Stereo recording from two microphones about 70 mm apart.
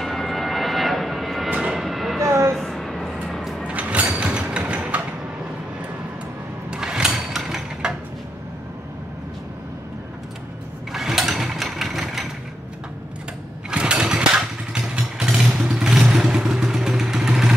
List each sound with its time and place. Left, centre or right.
0.0 s vehicle: centre
1.5 s vehicle: centre
1.8 s a sound: centre
2.2 s a sound: right
2.5 s music: centre
3.6 s a sound: centre
6.7 s sewing machine: centre
10.9 s sewing machine: centre
13.7 s vehicle: centre